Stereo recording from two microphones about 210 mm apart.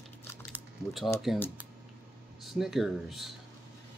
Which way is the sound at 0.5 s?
Centre (ahead or behind).